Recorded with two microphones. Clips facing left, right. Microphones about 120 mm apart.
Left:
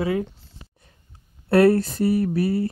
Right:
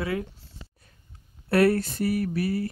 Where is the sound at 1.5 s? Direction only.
25° left (ahead or behind).